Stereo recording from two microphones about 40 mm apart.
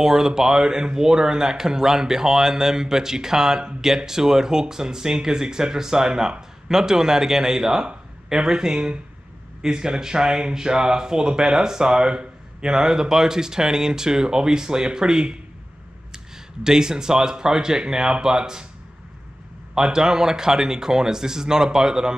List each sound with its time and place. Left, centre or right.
0.0 s speech: centre
16.6 s speech: centre
19.7 s speech: centre